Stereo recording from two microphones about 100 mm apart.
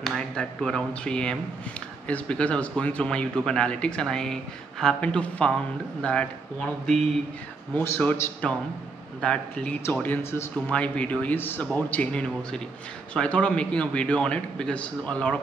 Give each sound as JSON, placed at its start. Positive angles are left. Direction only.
{"t": 0.0, "sound": "speech", "side_deg": 0}
{"t": 7.7, "sound": "a man's voice", "side_deg": 25}